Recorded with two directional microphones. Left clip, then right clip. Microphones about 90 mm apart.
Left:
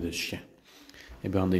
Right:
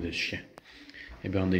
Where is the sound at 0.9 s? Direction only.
55° left (ahead or behind).